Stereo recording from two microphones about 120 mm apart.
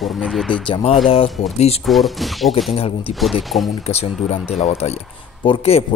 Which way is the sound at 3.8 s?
60° left (ahead or behind).